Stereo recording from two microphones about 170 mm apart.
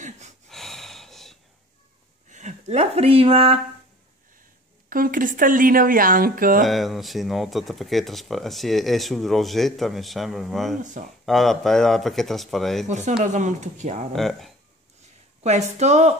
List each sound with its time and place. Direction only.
0.5 s gasp: centre (ahead or behind)
2.2 s speech: 45° right (ahead or behind)
4.8 s speech: 55° right (ahead or behind)
6.6 s speech: centre (ahead or behind)
10.8 s speech: 45° right (ahead or behind)
11.2 s speech: centre (ahead or behind)
12.8 s speech: 45° right (ahead or behind)
14.1 s speech: centre (ahead or behind)
15.4 s speech: 40° right (ahead or behind)